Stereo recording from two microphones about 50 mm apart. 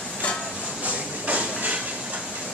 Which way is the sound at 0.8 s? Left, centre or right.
Right.